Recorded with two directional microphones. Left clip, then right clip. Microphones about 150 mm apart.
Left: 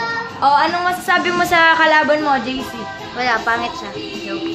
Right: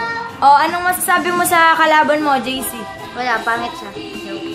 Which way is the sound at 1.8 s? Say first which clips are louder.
Right 1 dB; 45° right (ahead or behind).